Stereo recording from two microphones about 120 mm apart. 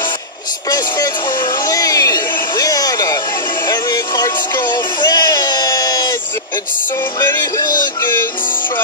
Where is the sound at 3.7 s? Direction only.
35° left (ahead or behind).